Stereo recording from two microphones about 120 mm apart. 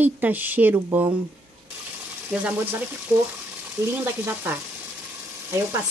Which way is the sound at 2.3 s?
10° right (ahead or behind).